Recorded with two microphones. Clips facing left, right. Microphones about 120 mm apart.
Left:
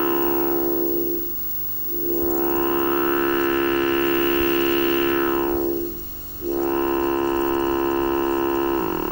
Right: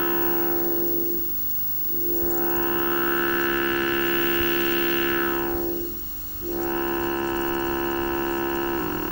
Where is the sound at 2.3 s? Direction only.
35° left (ahead or behind).